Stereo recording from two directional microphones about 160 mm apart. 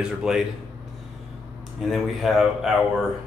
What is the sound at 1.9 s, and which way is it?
Speech, centre (ahead or behind).